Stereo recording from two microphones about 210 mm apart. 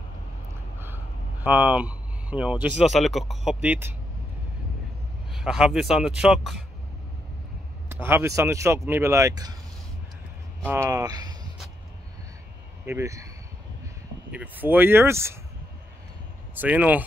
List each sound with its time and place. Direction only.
0.7 s speech: 10° right (ahead or behind)
5.3 s speech: centre (ahead or behind)
7.9 s speech: 10° right (ahead or behind)
10.7 s speech: 15° right (ahead or behind)
12.8 s speech: 15° right (ahead or behind)
14.3 s speech: 10° right (ahead or behind)
16.5 s speech: 5° right (ahead or behind)